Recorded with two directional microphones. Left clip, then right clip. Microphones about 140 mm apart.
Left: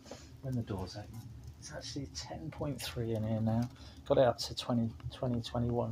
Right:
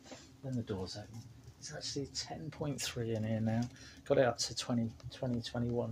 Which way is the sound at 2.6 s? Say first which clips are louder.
Even; 25° right (ahead or behind).